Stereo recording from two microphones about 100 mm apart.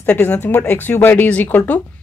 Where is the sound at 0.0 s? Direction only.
20° left (ahead or behind).